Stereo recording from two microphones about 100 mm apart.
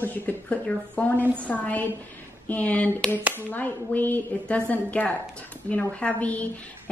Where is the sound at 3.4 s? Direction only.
15° left (ahead or behind).